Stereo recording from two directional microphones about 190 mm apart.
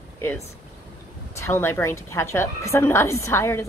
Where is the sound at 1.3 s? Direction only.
15° left (ahead or behind).